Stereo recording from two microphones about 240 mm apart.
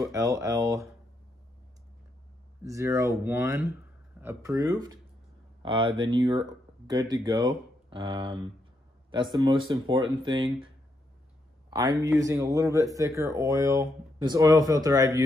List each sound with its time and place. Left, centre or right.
0.0 s speech: centre
2.6 s speech: centre
11.7 s speech: centre